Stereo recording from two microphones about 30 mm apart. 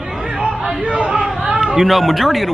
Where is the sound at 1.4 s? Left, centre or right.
Right.